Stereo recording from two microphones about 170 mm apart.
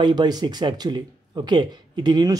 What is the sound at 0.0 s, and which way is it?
Speech, 25° right (ahead or behind).